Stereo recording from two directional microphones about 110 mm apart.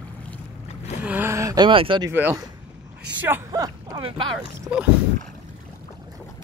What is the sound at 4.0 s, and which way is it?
Speech, 50° right (ahead or behind).